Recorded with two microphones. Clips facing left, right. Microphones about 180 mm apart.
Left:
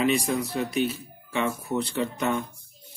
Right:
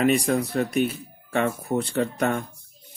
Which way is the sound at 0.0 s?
50° right (ahead or behind).